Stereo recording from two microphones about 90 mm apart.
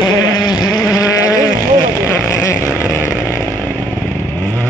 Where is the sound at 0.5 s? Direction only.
50° left (ahead or behind).